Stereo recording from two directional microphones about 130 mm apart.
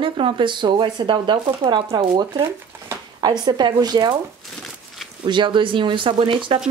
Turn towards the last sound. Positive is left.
turn(degrees=-40)  # may be behind; listen again after turning